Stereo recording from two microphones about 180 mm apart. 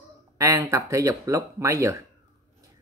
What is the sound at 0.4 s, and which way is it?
Speech, 15° right (ahead or behind).